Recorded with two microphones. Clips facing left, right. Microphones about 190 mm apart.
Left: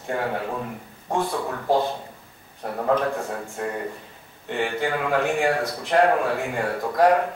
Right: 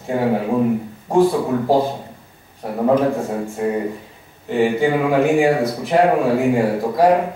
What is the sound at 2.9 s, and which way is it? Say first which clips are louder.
Speech: right 7 dB; 15° right (ahead or behind).